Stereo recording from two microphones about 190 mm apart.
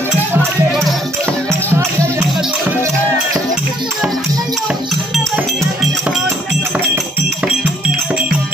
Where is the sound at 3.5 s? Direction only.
Centre (ahead or behind).